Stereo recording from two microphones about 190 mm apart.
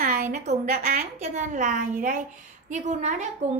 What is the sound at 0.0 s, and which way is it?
A woman's voice, 45° right (ahead or behind).